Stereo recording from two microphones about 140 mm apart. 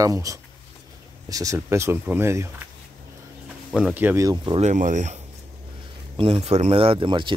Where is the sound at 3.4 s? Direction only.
10° right (ahead or behind).